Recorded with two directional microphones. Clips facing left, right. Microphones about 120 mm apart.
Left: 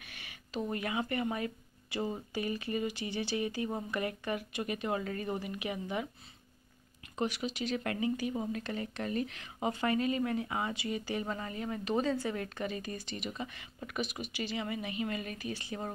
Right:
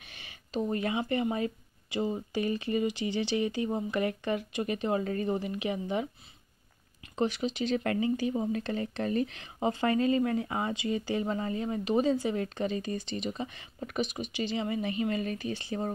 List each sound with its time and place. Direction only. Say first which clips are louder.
0.0 s speech: even; 25° right (ahead or behind)
7.2 s speech: right 5 dB; 25° right (ahead or behind)
11.8 s speech: right 4 dB; 15° right (ahead or behind)